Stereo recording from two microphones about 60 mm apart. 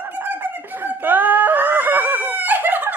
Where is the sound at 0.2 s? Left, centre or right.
Right.